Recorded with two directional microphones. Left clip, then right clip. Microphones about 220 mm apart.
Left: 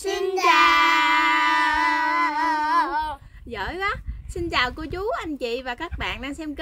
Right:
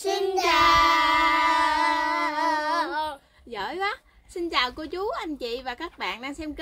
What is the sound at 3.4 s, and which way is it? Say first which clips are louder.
A woman's voice: left 2 dB; 15° left (ahead or behind).